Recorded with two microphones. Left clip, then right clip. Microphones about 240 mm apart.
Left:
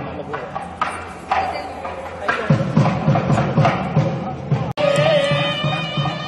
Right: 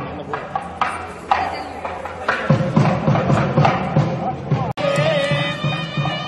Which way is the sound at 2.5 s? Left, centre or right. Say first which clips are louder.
Right 1 dB; right.